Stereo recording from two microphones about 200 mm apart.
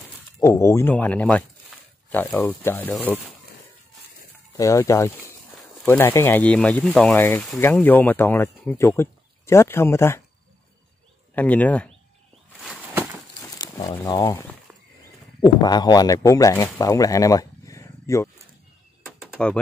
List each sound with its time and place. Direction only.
0.4 s speech: 15° left (ahead or behind)
4.6 s speech: 15° left (ahead or behind)
11.3 s speech: 10° left (ahead or behind)
13.6 s speech: 20° left (ahead or behind)
19.0 s a sound: centre (ahead or behind)